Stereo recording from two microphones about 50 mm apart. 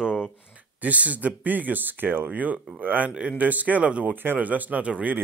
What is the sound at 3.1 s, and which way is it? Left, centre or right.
Speech, centre.